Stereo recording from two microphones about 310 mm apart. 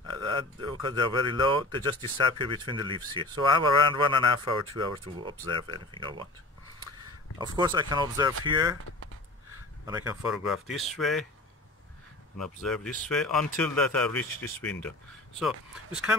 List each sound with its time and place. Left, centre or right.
0.1 s speech: centre
7.3 s speech: centre
9.8 s speech: centre
12.4 s speech: centre